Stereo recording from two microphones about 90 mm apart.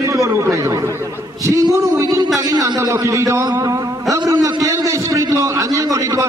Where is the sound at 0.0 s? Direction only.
35° right (ahead or behind).